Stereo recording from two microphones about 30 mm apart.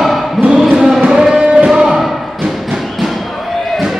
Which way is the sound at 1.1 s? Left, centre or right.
Centre.